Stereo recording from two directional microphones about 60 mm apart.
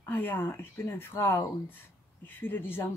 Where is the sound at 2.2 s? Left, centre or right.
Left.